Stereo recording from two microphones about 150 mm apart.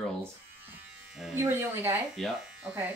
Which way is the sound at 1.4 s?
15° right (ahead or behind).